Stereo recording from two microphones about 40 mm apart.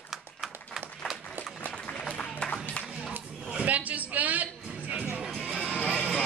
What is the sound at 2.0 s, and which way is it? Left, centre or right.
Applause, left.